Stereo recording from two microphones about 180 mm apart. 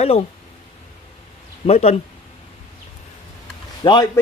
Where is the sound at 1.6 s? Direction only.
35° left (ahead or behind).